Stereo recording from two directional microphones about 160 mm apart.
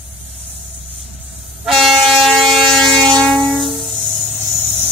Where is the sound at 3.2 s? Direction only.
Centre (ahead or behind).